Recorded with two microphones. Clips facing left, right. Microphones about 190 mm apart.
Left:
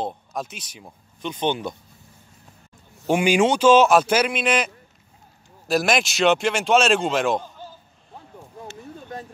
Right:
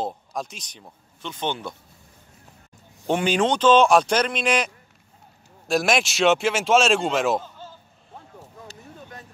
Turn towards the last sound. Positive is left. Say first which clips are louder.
# left 1 dB
turn(degrees=0)  # may be behind; listen again after turning